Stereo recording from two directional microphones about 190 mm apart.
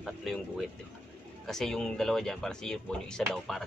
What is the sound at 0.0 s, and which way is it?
Speech, centre (ahead or behind).